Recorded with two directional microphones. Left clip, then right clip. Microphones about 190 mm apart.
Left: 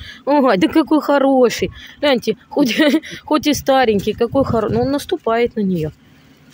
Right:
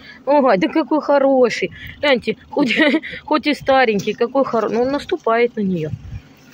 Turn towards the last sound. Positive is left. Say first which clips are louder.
# even
turn(degrees=35)  # may be behind; listen again after turning